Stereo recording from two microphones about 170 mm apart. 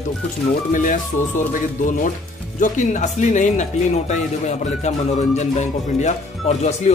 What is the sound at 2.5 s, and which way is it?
Speech, 45° left (ahead or behind).